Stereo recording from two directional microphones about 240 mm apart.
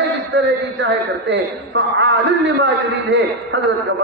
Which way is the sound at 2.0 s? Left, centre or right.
Right.